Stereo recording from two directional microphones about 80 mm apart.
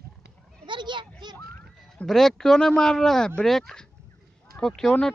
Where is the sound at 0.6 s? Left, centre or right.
Right.